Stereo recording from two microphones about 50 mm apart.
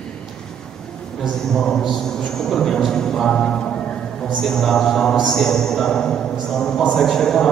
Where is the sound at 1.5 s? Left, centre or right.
Centre.